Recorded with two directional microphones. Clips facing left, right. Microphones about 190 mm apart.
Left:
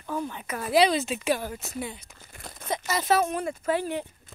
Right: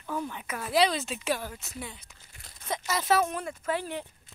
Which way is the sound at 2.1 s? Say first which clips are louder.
Left 10 dB; 50° left (ahead or behind).